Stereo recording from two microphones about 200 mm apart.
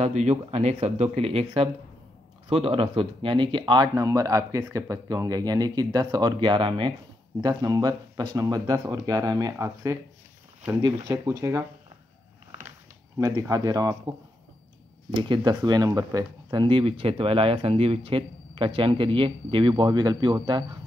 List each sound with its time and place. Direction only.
0.0 s speech: 35° right (ahead or behind); by 11.6 s 15° right (ahead or behind)
13.2 s speech: 15° right (ahead or behind)
15.1 s speech: 25° right (ahead or behind)